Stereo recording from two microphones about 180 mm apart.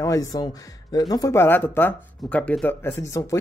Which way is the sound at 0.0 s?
20° left (ahead or behind).